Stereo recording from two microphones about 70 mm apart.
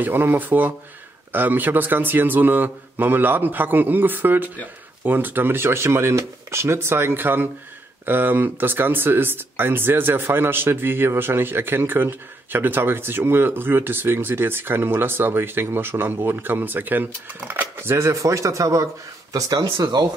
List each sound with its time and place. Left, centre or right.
0.0 s a man's voice: right